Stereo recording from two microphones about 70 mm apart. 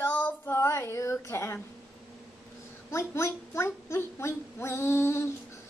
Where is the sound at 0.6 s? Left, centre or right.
Left.